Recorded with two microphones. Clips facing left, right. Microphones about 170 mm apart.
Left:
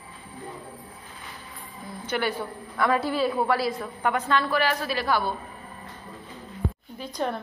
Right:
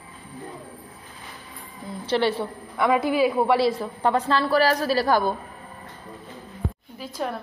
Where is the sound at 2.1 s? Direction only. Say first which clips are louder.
Right 5 dB; 30° right (ahead or behind).